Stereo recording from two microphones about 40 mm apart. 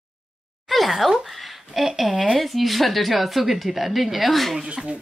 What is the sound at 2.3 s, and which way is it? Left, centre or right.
A woman's voice, centre.